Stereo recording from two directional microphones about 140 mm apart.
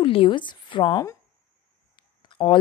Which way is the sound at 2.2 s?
35° left (ahead or behind).